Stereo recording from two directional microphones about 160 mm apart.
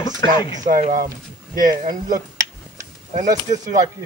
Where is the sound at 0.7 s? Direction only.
55° right (ahead or behind).